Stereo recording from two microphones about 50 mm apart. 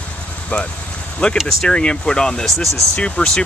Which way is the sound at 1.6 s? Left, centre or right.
Centre.